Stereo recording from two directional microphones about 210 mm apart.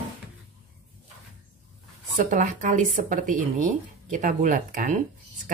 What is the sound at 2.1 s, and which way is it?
Speech, 35° right (ahead or behind).